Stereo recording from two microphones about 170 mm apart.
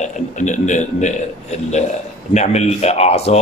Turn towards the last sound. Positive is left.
turn(degrees=40)  # may be behind; listen again after turning